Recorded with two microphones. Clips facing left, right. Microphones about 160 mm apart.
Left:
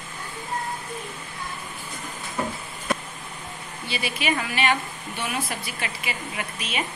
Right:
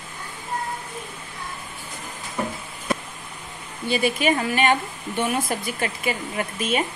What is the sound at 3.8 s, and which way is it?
Speech, 50° right (ahead or behind).